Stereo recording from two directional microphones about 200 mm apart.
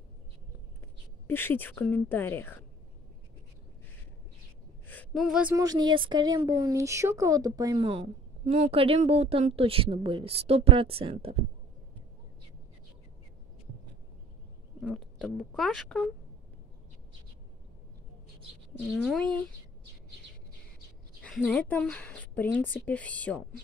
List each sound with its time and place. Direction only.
1.2 s a woman's voice: 10° left (ahead or behind)
4.8 s a sound: 10° left (ahead or behind)
5.2 s speech: 5° right (ahead or behind)
5.6 s speech: 20° right (ahead or behind)
14.8 s speech: centre (ahead or behind)
18.8 s speech: centre (ahead or behind)
21.2 s a woman's voice: 5° left (ahead or behind)